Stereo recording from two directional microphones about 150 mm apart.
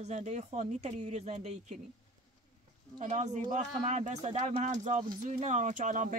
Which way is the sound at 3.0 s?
55° right (ahead or behind).